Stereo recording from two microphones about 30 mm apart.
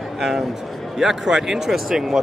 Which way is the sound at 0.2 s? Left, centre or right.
Centre.